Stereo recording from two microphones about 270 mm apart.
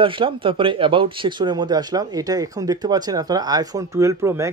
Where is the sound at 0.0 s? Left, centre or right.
Centre.